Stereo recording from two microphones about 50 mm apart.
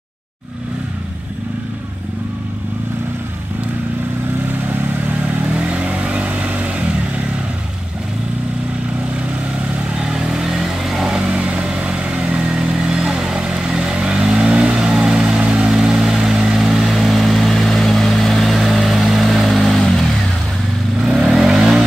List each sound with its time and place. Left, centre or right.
4.6 s vehicle: right
5.5 s vehicle: right
9.9 s vehicle: centre
11.2 s vehicle: right; by 20.1 s centre
21.3 s vehicle: centre